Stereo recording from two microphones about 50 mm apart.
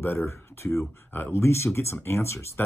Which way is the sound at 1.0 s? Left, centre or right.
Left.